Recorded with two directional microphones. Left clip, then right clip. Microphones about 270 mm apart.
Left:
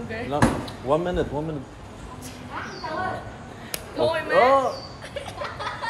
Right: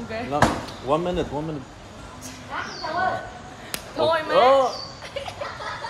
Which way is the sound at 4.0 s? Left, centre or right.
Centre.